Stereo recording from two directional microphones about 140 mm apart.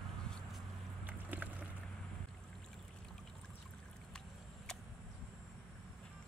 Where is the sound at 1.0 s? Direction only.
10° right (ahead or behind).